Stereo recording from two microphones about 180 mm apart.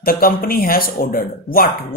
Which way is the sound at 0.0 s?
55° left (ahead or behind).